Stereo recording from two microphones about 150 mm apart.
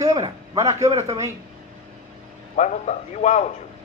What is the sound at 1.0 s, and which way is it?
Speech, 20° right (ahead or behind).